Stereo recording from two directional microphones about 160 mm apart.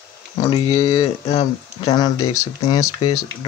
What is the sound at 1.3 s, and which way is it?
Speech, 40° left (ahead or behind).